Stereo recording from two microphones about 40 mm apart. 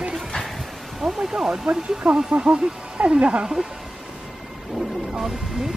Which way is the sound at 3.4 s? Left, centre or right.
Centre.